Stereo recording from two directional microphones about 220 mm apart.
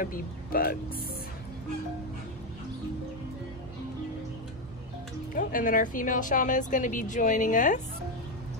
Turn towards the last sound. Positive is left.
turn(degrees=35)  # may be behind; listen again after turning